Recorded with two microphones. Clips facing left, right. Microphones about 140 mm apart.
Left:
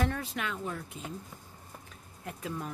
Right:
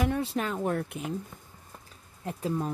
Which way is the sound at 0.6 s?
55° right (ahead or behind).